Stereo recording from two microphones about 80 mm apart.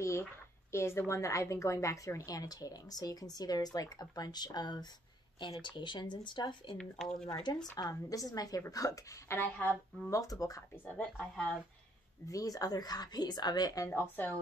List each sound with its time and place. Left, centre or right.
0.0 s a woman's voice: left
5.4 s speech: left
6.8 s speech: centre
7.7 s a woman's voice: left
9.4 s speech: left
11.0 s speech: centre
12.3 s speech: left
13.8 s a woman's voice: left